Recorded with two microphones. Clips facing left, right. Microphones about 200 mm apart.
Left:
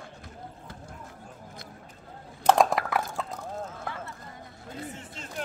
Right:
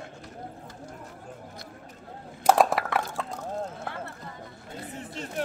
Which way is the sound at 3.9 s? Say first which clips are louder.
Right 2 dB; 60° right (ahead or behind).